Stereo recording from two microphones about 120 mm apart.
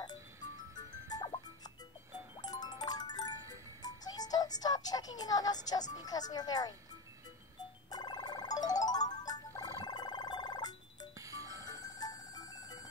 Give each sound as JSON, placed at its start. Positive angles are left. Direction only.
{"t": 0.7, "sound": "music", "side_deg": 35}
{"t": 5.9, "sound": "speech", "side_deg": 35}
{"t": 7.9, "sound": "music", "side_deg": 35}
{"t": 11.1, "sound": "music", "side_deg": -30}
{"t": 11.6, "sound": "music", "side_deg": 30}